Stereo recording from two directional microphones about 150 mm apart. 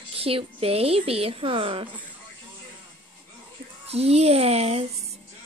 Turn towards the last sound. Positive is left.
turn(degrees=-45)  # may be behind; listen again after turning